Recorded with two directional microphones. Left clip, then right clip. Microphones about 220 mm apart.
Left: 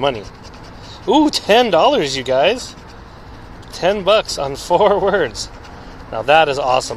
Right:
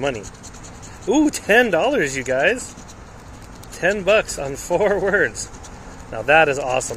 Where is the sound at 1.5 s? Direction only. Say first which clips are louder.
Left 4 dB; 55° left (ahead or behind).